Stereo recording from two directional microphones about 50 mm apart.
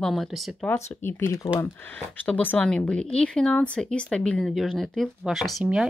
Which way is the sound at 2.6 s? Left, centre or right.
Left.